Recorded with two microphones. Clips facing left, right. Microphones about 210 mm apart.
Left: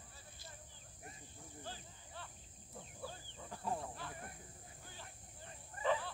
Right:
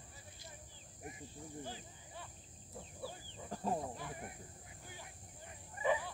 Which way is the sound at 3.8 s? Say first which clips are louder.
Right 3 dB; 15° right (ahead or behind).